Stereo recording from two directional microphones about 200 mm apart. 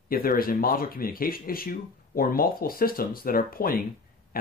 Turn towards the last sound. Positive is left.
turn(degrees=45)  # may be behind; listen again after turning